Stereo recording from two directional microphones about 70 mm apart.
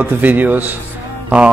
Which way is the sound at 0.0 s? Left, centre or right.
Right.